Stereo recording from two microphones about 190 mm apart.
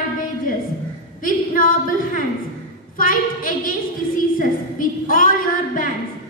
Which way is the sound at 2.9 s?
45° left (ahead or behind).